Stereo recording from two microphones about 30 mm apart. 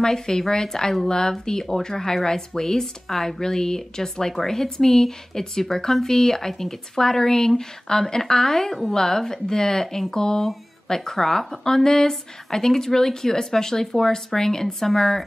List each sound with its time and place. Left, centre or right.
0.0 s speech: centre